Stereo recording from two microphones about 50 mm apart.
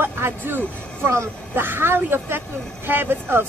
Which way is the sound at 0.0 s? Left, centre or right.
Right.